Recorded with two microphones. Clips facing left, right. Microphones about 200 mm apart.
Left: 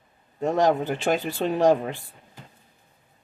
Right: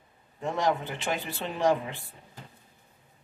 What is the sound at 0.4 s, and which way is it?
Speech, 40° left (ahead or behind).